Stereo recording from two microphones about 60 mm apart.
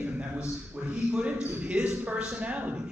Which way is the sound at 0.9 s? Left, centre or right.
Right.